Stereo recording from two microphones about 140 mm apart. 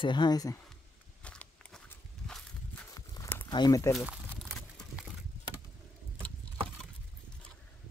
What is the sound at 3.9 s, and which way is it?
Crumpling, 5° right (ahead or behind).